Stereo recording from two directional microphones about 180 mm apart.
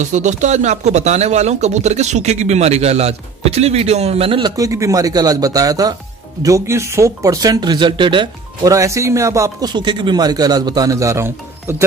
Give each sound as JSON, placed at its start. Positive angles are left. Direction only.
{"t": 0.0, "sound": "speech", "side_deg": -40}